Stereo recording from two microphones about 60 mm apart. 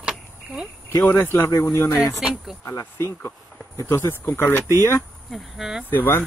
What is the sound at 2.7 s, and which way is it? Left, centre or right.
Speech, left.